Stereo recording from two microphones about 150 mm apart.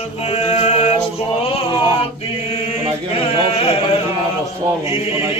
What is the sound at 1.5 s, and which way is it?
Chant, 40° left (ahead or behind).